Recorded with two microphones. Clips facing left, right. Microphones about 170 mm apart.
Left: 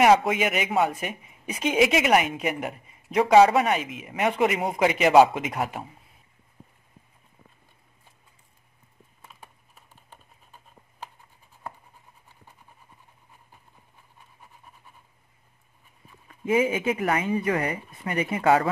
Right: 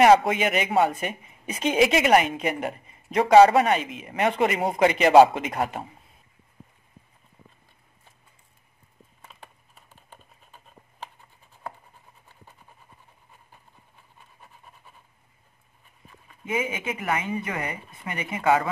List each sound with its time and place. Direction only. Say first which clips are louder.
0.0 s speech: right 2 dB; centre (ahead or behind)
16.4 s speech: left 6 dB; 30° left (ahead or behind)